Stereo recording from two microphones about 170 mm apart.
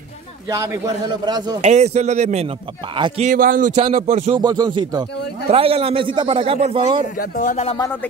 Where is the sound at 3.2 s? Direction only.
55° right (ahead or behind).